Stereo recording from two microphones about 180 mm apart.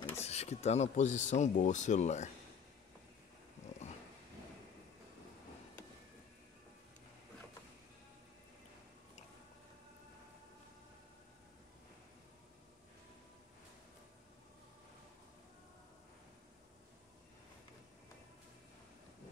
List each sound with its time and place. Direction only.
0.2 s speech: 35° left (ahead or behind)